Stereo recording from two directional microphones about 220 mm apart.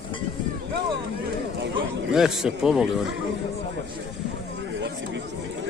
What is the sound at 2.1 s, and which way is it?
Speech, centre (ahead or behind).